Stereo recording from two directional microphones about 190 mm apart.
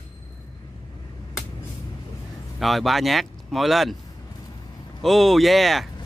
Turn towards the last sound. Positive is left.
turn(degrees=0)  # may be behind; listen again after turning